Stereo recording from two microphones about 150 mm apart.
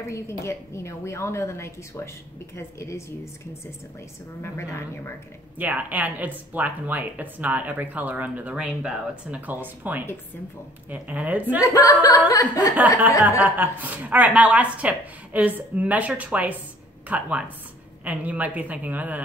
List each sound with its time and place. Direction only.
0.0 s a woman's voice: 20° left (ahead or behind)
4.4 s a woman's voice: 15° left (ahead or behind)
5.6 s speech: 10° right (ahead or behind)
11.6 s a woman's voice: 25° left (ahead or behind)
13.4 s speech: 10° right (ahead or behind)